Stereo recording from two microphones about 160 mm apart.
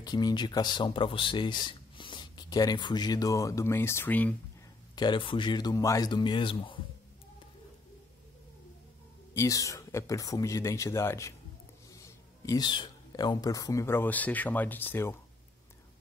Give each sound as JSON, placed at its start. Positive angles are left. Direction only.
{"t": 0.0, "sound": "speech", "side_deg": 25}
{"t": 4.9, "sound": "speech", "side_deg": 30}
{"t": 9.3, "sound": "speech", "side_deg": 20}